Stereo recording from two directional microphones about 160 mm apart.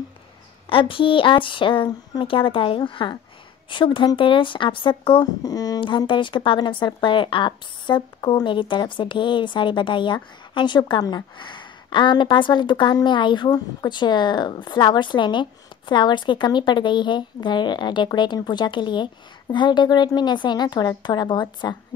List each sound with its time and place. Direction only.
0.7 s speech: 35° left (ahead or behind)